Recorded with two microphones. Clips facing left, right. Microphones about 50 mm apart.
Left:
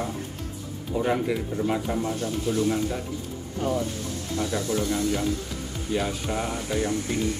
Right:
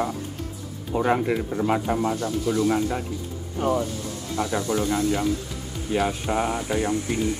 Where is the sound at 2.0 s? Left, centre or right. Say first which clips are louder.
Right 3 dB; right; by 6.9 s centre.